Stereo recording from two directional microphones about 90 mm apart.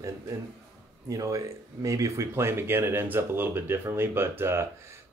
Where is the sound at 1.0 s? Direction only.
40° right (ahead or behind).